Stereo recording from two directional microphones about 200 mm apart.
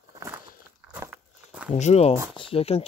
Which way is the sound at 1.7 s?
35° left (ahead or behind).